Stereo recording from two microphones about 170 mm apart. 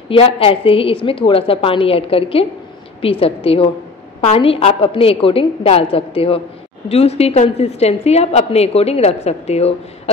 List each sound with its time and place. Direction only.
0.1 s a woman's voice: 35° left (ahead or behind)